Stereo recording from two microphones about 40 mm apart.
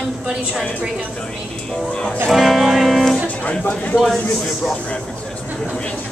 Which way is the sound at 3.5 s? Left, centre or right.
Left.